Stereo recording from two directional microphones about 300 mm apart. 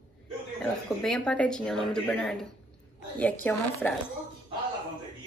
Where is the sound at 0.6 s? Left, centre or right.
Centre.